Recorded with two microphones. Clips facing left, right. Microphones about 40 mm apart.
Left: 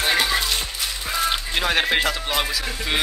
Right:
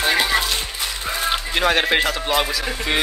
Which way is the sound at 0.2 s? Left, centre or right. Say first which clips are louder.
Right 2 dB; centre.